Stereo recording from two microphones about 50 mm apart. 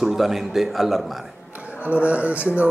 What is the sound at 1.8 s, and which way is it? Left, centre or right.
Speech, right.